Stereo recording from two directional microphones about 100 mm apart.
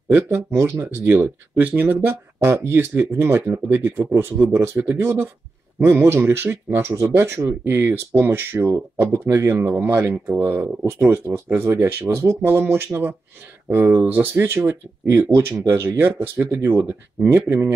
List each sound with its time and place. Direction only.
0.1 s speech: 25° right (ahead or behind)